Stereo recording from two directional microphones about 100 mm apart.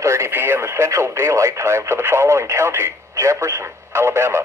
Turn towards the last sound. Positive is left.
turn(degrees=-25)  # may be behind; listen again after turning